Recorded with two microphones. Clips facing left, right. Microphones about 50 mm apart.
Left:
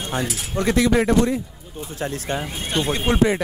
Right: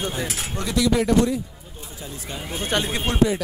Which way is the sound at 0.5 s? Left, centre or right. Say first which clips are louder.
Left 4 dB; left.